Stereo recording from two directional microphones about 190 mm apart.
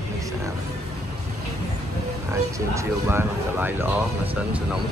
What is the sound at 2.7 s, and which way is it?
Speech, 10° right (ahead or behind).